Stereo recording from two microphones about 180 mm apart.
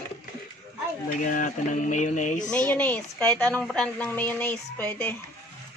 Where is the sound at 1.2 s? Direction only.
45° left (ahead or behind).